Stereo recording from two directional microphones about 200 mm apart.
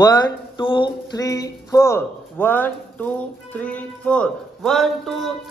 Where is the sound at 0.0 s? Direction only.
20° left (ahead or behind).